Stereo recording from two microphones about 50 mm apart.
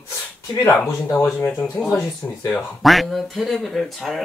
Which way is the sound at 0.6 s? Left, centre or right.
Left.